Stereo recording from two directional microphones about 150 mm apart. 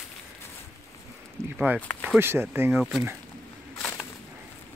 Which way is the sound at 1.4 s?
5° left (ahead or behind).